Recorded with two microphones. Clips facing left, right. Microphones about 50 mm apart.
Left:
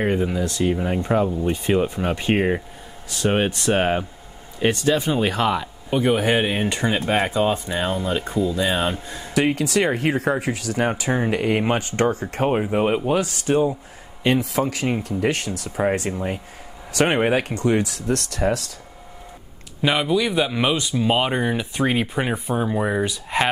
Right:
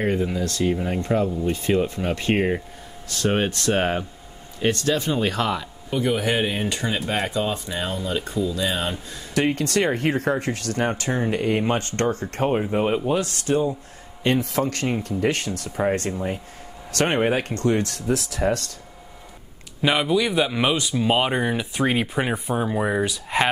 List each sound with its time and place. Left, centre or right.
0.0 s speech: centre
5.9 s speech: left
9.3 s speech: centre
14.2 s speech: centre
17.9 s speech: centre
19.8 s speech: centre